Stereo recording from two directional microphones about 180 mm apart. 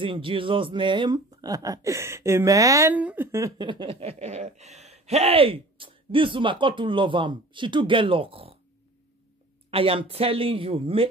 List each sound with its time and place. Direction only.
0.0 s speech: 30° right (ahead or behind)
9.7 s speech: 30° right (ahead or behind)